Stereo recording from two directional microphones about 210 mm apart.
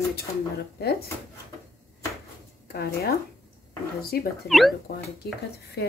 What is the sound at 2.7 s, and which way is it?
Speech, 50° left (ahead or behind).